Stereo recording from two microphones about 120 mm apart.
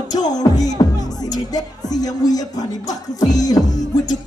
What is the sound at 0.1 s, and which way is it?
Music, 35° left (ahead or behind).